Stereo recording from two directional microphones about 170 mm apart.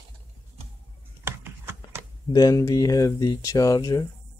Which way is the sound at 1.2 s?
15° right (ahead or behind).